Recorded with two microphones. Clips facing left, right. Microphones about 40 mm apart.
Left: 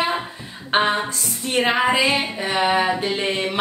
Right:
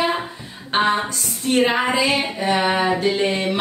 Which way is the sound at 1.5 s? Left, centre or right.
Centre.